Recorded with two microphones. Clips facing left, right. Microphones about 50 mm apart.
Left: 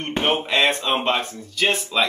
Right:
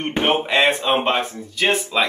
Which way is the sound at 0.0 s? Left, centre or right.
Centre.